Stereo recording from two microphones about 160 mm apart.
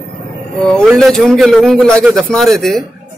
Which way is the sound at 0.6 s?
5° left (ahead or behind).